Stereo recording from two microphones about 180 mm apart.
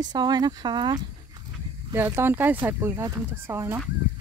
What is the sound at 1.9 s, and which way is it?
Speech, 15° right (ahead or behind).